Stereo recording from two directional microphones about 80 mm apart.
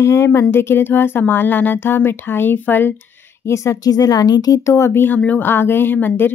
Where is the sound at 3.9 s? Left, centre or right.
Left.